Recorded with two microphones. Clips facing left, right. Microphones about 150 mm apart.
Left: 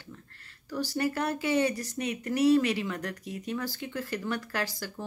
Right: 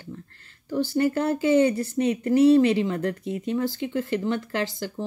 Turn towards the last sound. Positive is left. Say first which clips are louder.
# right 6 dB
turn(degrees=-25)  # may be behind; listen again after turning